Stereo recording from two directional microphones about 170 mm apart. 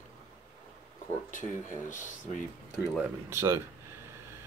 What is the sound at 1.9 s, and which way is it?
Speech, 50° left (ahead or behind).